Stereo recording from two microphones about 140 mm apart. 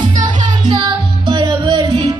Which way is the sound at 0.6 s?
35° right (ahead or behind).